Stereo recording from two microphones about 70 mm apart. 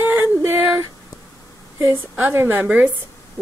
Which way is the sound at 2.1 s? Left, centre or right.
Right.